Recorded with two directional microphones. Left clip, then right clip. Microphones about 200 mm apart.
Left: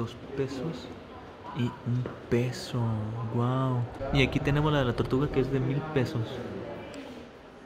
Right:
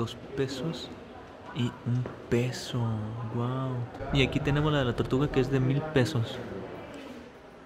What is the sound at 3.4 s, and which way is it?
Speech, 10° left (ahead or behind).